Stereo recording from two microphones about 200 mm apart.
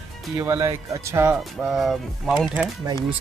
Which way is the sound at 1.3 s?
Centre (ahead or behind).